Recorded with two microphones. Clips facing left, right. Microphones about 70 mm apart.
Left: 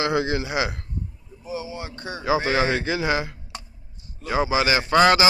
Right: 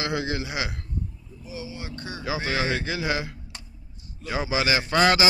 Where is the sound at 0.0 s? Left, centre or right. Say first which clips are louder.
Left 5 dB; centre.